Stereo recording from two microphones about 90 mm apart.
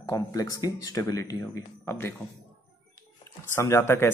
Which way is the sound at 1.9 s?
25° left (ahead or behind).